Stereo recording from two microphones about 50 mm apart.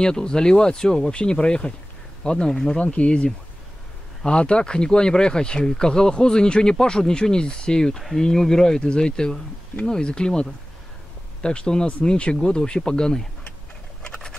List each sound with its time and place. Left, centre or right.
0.0 s speech: centre
2.8 s speech: left
14.0 s patter: centre